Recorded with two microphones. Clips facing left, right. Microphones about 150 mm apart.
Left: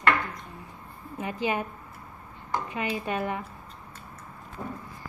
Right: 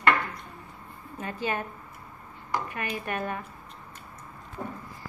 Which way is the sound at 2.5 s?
20° left (ahead or behind).